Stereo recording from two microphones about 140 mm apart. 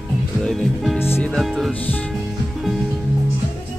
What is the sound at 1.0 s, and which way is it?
Music, 15° left (ahead or behind).